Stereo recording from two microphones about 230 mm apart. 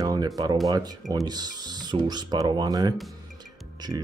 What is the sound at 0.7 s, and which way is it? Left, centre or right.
Speech, centre.